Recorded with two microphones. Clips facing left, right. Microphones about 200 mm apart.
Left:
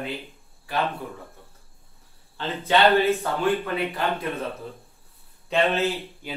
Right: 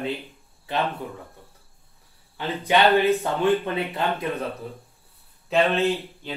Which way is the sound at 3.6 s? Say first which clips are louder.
Even; 25° right (ahead or behind).